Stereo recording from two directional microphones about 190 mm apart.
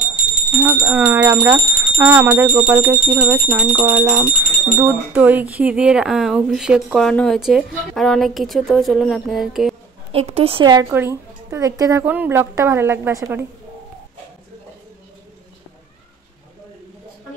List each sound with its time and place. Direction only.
0.7 s speech: 5° right (ahead or behind)
10.1 s a woman's voice: 30° right (ahead or behind); by 13.5 s 15° right (ahead or behind)